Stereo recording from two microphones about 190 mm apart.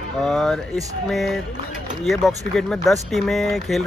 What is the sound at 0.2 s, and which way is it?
Speech, centre (ahead or behind).